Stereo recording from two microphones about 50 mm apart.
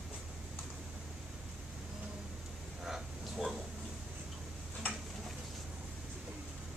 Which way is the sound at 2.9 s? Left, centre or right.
Centre.